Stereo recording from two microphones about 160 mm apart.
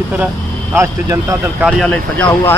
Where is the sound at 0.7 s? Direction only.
20° right (ahead or behind).